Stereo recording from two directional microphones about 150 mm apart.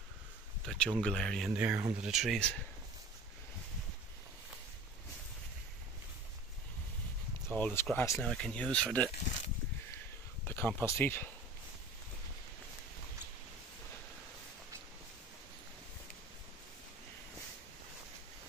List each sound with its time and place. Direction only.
0.7 s speech: 5° left (ahead or behind)
1.5 s speech: 10° right (ahead or behind)
7.5 s speech: 10° left (ahead or behind)
8.2 s speech: 5° left (ahead or behind)
10.4 s a sound: 15° left (ahead or behind)
10.8 s speech: 15° left (ahead or behind)